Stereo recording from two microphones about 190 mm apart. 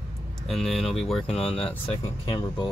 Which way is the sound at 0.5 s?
Centre (ahead or behind).